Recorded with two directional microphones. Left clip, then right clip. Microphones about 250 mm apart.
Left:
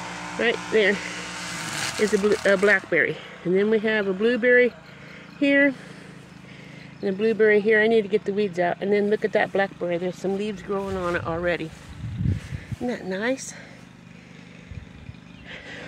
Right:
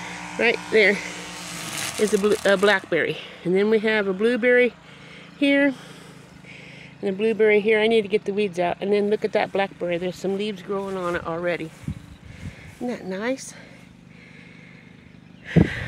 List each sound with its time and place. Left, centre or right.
0.0 s speech: centre
7.0 s speech: centre
12.8 s speech: centre
15.4 s a sound: right